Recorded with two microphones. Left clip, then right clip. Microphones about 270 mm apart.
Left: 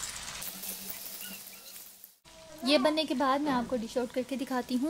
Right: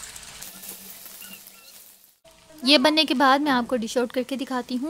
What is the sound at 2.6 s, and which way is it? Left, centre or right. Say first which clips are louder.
A woman's voice: right 8 dB; right.